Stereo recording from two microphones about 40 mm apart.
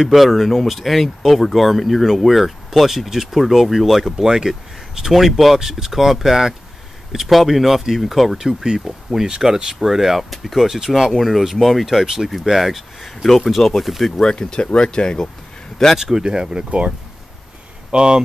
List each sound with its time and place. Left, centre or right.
0.0 s speech: centre
8.4 s speech: centre
14.2 s speech: centre
16.0 s speech: centre
17.9 s speech: right